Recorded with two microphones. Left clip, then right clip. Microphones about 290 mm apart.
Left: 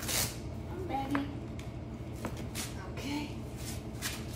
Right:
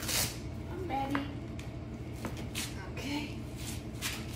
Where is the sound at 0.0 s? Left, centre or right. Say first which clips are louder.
Right 1 dB; centre.